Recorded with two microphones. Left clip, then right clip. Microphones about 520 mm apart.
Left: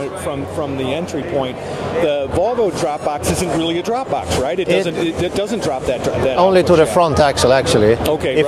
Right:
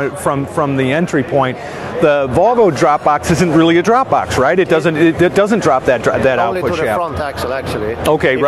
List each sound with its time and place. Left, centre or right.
2.0 s speech: right
7.0 s speech: left
8.0 s speech: right